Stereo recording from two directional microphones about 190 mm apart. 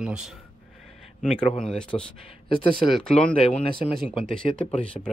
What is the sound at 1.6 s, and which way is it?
Speech, 5° left (ahead or behind).